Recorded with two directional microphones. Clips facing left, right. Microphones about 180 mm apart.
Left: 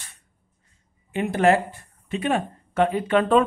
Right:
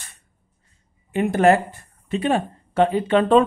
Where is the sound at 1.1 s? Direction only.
45° right (ahead or behind).